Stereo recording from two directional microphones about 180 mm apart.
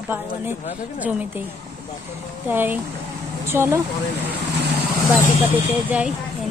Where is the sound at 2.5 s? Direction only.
10° right (ahead or behind).